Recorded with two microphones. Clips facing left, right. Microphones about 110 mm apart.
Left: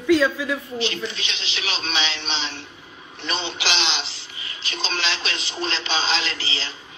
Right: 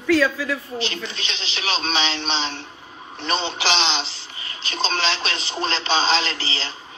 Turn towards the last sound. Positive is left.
turn(degrees=-35)  # may be behind; listen again after turning